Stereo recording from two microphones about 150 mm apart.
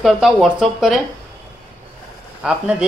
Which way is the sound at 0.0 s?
Centre (ahead or behind).